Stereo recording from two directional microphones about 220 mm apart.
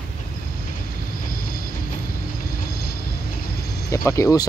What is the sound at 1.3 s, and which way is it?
Train, 40° left (ahead or behind).